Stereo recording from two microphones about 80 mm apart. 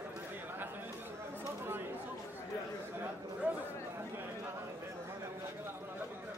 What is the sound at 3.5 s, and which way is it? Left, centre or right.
Chatter, right.